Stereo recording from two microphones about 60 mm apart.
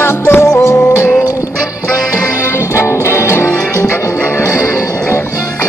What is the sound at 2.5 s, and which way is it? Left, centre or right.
Music, left.